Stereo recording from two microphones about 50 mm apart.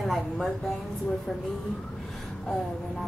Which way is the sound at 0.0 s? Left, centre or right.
Centre.